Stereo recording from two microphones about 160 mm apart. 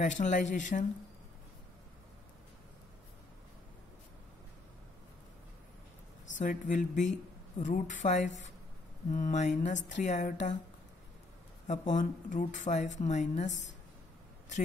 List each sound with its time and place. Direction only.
0.0 s speech: 50° left (ahead or behind)
6.3 s speech: 55° left (ahead or behind)
11.6 s speech: 50° left (ahead or behind)